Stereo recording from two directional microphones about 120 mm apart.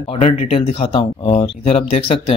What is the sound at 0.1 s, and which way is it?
Speech, 50° left (ahead or behind).